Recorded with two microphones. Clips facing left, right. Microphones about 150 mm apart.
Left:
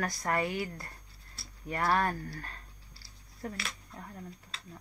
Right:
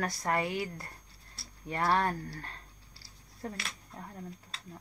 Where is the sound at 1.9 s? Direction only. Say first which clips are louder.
Even; 25° right (ahead or behind).